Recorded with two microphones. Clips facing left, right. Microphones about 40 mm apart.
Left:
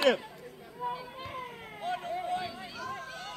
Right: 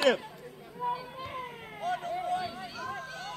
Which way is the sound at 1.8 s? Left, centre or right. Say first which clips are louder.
Right 2 dB; left.